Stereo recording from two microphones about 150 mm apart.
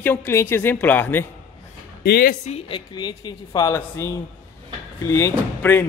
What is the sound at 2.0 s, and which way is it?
Speech, 85° left.